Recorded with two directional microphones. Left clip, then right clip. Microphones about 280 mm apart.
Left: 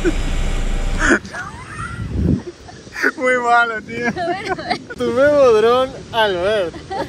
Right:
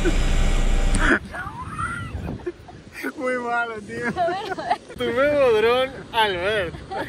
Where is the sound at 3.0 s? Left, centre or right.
Left.